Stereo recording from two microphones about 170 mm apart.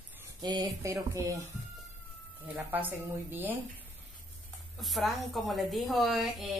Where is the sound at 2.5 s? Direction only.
10° right (ahead or behind).